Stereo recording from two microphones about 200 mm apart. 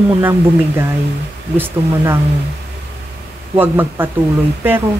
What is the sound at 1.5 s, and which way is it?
Speech, 10° right (ahead or behind).